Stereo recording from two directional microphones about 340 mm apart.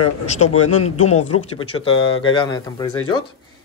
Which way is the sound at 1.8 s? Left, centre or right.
Centre.